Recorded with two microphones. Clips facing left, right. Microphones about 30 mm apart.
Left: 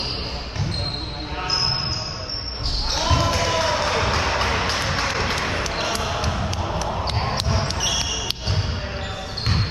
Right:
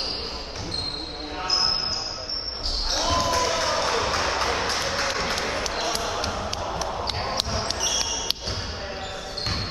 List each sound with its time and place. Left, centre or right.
2.9 s basketball bounce: centre